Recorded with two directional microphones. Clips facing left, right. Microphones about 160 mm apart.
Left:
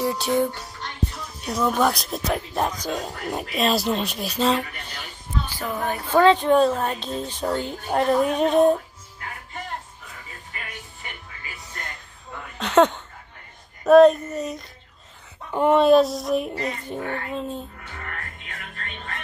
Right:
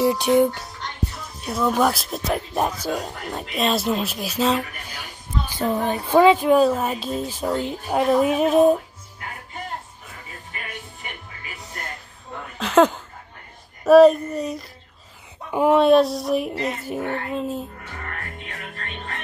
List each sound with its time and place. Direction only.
0.0 s speech: 15° right (ahead or behind)
1.4 s speech: centre (ahead or behind)
3.3 s speech: 5° left (ahead or behind)
4.9 s a sound: 15° right (ahead or behind)
6.0 s speech: 10° right (ahead or behind)
12.5 s speech: centre (ahead or behind)